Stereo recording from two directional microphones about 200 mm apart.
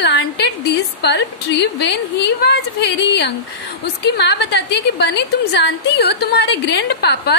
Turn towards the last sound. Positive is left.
turn(degrees=55)  # may be behind; listen again after turning